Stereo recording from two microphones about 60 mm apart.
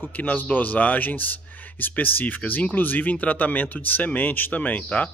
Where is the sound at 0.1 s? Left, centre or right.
Left.